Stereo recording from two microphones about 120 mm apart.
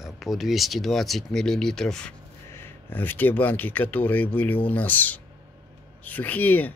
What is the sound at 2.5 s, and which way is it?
Speech, 15° left (ahead or behind).